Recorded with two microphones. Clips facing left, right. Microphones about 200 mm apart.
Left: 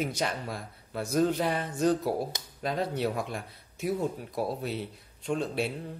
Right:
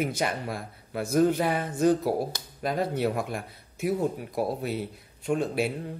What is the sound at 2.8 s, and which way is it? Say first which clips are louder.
A man's voice: right 3 dB; 55° right (ahead or behind).